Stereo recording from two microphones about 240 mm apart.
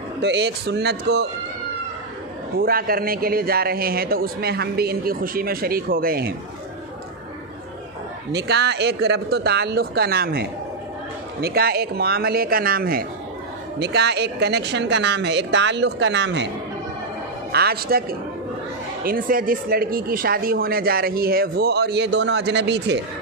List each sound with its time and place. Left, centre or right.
0.2 s speech: right
2.6 s speech: right
8.3 s speech: right
17.5 s speech: right
19.0 s speech: right